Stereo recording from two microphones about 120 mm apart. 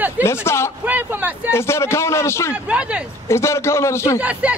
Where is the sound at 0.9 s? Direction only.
10° right (ahead or behind).